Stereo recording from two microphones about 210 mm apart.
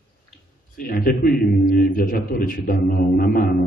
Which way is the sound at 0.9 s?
40° left (ahead or behind).